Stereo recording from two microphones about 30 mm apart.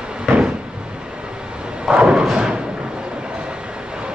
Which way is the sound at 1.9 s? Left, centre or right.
Right.